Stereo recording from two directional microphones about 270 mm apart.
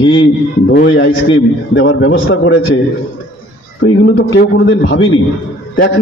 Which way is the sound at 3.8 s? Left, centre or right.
Left.